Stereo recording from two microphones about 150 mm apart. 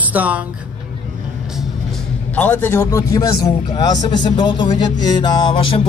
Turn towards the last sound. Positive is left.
turn(degrees=35)  # may be behind; listen again after turning